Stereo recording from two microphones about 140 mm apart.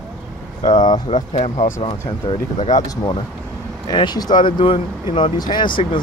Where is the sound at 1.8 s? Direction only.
40° left (ahead or behind).